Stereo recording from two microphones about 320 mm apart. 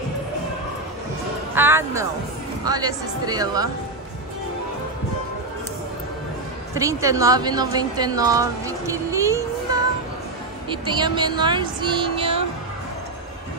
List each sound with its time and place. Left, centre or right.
1.5 s speech: centre
6.7 s a woman's voice: centre
10.7 s speech: centre